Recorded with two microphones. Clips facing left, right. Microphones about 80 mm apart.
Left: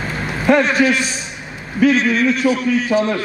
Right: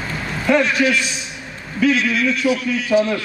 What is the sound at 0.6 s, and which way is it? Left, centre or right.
A man's voice, left.